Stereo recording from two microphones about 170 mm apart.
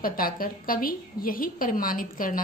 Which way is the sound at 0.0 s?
55° left (ahead or behind).